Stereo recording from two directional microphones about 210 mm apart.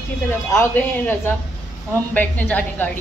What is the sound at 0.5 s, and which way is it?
A woman's voice, 10° left (ahead or behind).